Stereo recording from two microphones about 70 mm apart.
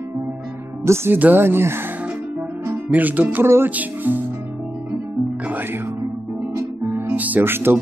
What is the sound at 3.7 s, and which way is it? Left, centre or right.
Music, right.